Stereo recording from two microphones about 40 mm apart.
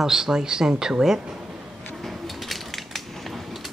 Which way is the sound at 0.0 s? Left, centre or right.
Centre.